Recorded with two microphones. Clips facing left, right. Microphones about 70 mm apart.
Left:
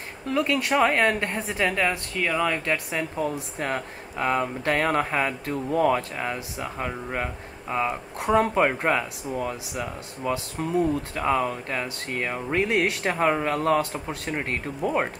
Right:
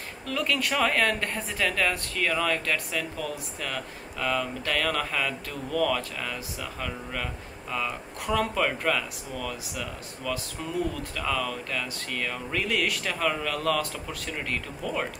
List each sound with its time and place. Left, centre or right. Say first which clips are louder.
0.3 s speech: left 5 dB; left